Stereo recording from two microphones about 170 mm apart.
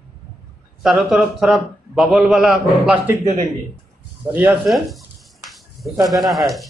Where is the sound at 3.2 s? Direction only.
40° right (ahead or behind).